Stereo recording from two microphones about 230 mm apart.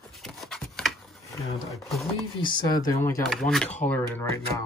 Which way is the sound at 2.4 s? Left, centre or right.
Centre.